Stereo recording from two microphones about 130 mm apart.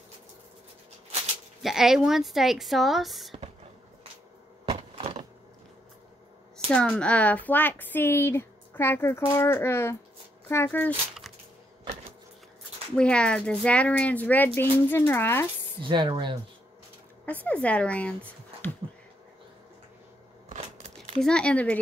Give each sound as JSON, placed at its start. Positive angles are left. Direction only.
{"t": 1.6, "sound": "speech", "side_deg": -5}
{"t": 4.9, "sound": "a sound", "side_deg": -45}
{"t": 6.7, "sound": "speech", "side_deg": 10}
{"t": 12.9, "sound": "speech", "side_deg": 5}
{"t": 15.8, "sound": "speech", "side_deg": -35}
{"t": 17.3, "sound": "speech", "side_deg": 10}
{"t": 20.4, "sound": "a sound", "side_deg": -70}
{"t": 21.2, "sound": "speech", "side_deg": 5}